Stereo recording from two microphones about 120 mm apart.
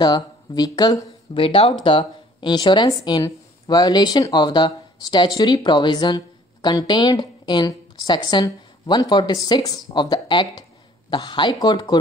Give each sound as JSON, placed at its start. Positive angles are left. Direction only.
{"t": 0.0, "sound": "speech", "side_deg": 35}
{"t": 1.3, "sound": "speech", "side_deg": 50}